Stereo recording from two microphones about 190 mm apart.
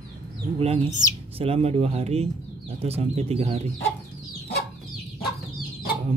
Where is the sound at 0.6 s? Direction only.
35° right (ahead or behind).